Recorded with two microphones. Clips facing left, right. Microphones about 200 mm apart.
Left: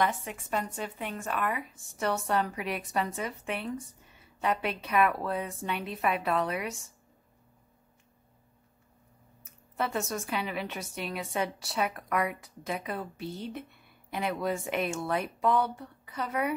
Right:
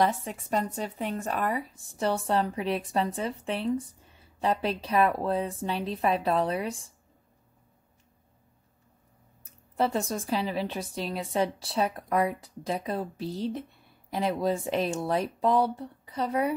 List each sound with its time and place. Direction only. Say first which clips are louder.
0.0 s a woman's voice: right 4 dB; 35° right (ahead or behind)
9.8 s a woman's voice: right 4 dB; 30° right (ahead or behind)